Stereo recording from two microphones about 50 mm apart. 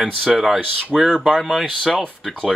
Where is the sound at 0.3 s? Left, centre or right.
Centre.